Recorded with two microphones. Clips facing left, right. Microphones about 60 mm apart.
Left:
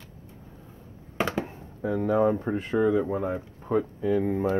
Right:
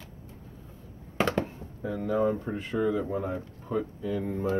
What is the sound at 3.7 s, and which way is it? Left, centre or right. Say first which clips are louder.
Speech: left 6 dB; left.